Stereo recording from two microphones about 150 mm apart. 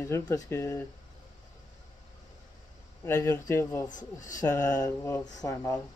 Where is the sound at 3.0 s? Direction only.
15° left (ahead or behind).